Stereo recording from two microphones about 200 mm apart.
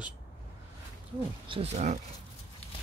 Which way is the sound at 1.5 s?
35° right (ahead or behind).